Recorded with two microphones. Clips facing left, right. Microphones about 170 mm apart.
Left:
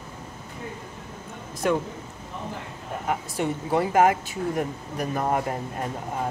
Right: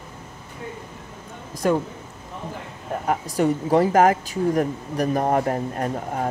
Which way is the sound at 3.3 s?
40° right (ahead or behind).